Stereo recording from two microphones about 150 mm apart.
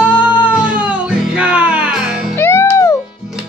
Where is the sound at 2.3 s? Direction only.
15° left (ahead or behind).